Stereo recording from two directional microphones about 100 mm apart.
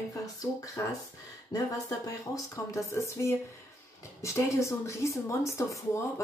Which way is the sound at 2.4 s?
30° left (ahead or behind).